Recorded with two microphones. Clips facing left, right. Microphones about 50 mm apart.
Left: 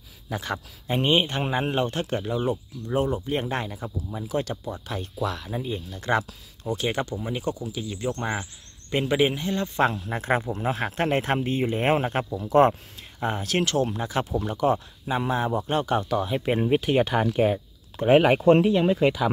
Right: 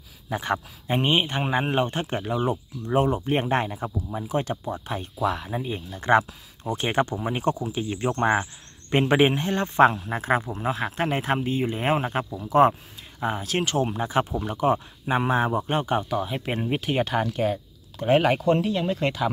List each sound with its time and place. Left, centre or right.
0.3 s speech: right
3.3 s speech: right
9.8 s speech: right; by 12.3 s centre
12.5 s speech: centre
13.7 s speech: centre
17.3 s speech: centre
18.4 s speech: left
18.7 s speech: centre